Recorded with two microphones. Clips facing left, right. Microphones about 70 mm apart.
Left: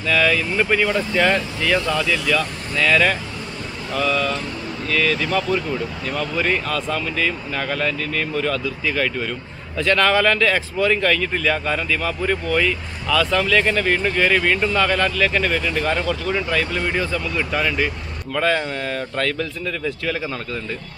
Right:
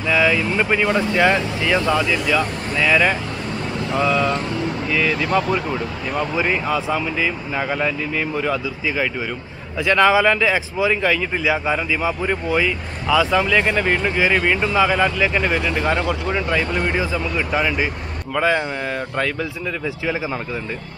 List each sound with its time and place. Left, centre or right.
0.1 s speech: centre